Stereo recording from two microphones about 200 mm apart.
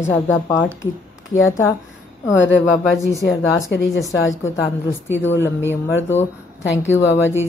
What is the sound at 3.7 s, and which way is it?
Speech, 70° left (ahead or behind).